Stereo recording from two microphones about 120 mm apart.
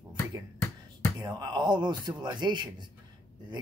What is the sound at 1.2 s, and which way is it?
Speech, 35° right (ahead or behind).